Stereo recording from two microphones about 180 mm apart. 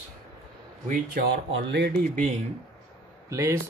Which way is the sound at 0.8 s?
50° right (ahead or behind).